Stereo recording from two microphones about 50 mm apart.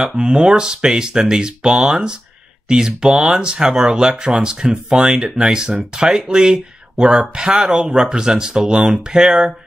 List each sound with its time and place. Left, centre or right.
0.0 s speech: centre